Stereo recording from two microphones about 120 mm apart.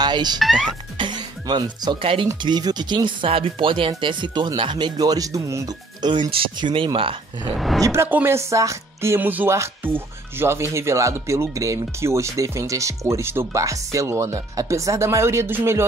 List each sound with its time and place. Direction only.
0.0 s music: 35° right (ahead or behind)
0.4 s speech: centre (ahead or behind)
0.7 s speech: 40° right (ahead or behind)
2.4 s speech: 35° right (ahead or behind)
6.0 s speech: 40° right (ahead or behind)
7.5 s speech: centre (ahead or behind)
7.8 s speech: 20° right (ahead or behind)